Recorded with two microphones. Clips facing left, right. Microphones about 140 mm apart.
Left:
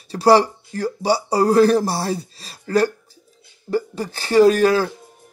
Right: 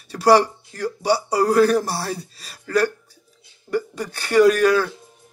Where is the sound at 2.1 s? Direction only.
25° left (ahead or behind).